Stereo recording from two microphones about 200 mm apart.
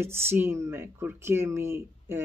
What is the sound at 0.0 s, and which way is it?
Speech, 10° right (ahead or behind).